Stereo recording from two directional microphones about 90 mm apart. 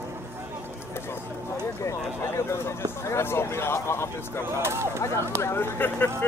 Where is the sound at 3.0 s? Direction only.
30° left (ahead or behind).